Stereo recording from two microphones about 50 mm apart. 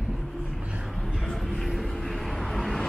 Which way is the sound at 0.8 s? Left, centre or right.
Centre.